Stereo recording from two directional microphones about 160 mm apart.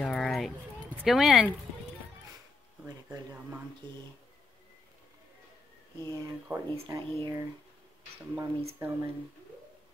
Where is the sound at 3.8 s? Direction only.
30° right (ahead or behind).